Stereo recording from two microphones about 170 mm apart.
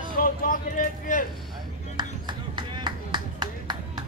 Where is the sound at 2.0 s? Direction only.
25° right (ahead or behind).